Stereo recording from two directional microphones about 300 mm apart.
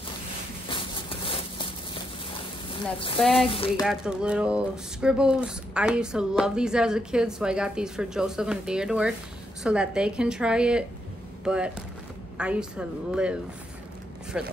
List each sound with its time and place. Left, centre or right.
0.7 s a sound: centre
2.7 s speech: centre
3.2 s speech: centre
3.4 s speech: centre
3.8 s speech: centre